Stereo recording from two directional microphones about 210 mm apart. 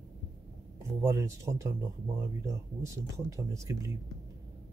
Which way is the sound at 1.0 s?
15° right (ahead or behind).